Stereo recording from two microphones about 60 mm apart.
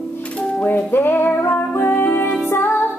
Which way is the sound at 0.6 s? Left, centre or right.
Left.